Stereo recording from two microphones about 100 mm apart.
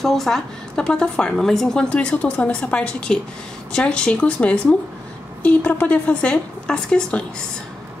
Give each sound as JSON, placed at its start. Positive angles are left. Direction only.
{"t": 0.0, "sound": "a woman's voice", "side_deg": 0}